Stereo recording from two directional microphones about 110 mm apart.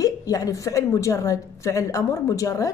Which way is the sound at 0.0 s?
30° left (ahead or behind).